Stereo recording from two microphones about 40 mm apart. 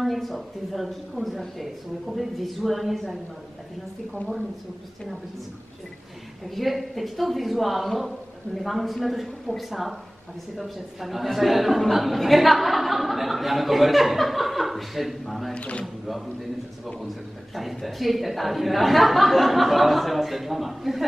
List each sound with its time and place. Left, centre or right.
0.0 s a man's voice: centre
6.4 s a man's voice: centre
15.5 s speech: left
15.8 s a man's voice: centre